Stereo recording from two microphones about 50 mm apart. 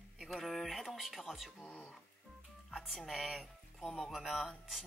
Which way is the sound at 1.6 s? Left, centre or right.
Left.